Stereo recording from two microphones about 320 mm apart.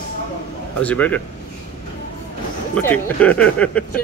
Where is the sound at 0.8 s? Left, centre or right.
Centre.